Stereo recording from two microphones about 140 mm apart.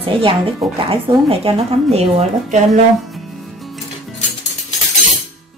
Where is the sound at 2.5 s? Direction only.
55° right (ahead or behind).